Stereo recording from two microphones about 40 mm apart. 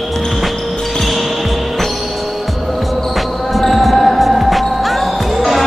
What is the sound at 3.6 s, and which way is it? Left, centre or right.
Music, centre.